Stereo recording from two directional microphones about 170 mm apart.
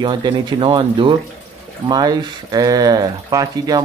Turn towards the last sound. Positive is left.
turn(degrees=-20)  # may be behind; listen again after turning